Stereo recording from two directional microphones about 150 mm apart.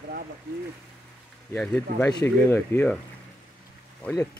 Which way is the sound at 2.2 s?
15° left (ahead or behind).